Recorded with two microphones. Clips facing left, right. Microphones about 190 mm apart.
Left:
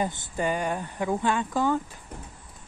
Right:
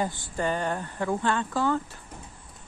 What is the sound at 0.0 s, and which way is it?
Speech, 15° left (ahead or behind).